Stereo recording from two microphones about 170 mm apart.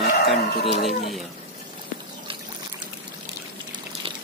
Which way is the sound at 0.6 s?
40° left (ahead or behind).